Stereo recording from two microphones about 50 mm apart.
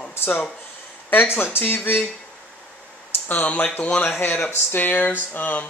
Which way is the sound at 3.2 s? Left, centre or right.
Left.